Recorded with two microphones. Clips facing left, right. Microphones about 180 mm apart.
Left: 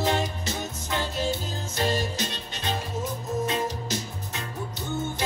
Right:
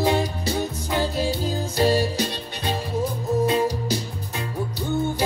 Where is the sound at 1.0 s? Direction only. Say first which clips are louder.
Right 5 dB; 35° right (ahead or behind).